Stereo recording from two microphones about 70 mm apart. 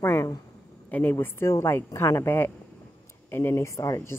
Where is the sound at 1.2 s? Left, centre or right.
Left.